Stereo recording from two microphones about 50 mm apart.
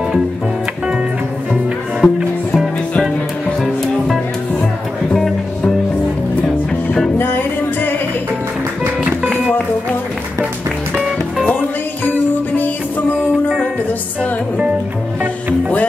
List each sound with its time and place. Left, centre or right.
1.5 s music: centre
3.6 s music: centre
6.4 s music: centre
7.2 s music: left
12.0 s music: left